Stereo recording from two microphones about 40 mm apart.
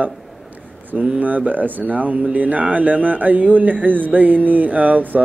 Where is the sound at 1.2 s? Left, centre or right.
Right.